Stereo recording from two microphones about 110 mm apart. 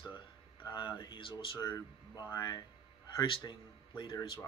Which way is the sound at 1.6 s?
35° left (ahead or behind).